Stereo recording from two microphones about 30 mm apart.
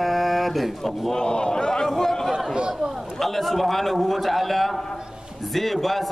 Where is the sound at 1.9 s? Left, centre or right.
Centre.